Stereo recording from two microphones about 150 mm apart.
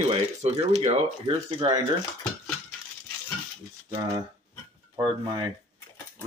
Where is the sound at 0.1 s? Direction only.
40° right (ahead or behind).